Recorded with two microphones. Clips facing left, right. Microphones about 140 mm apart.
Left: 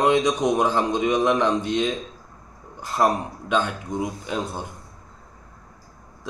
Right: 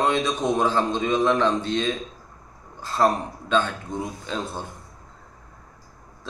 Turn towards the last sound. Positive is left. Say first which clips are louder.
# left 2 dB
turn(degrees=15)  # may be behind; listen again after turning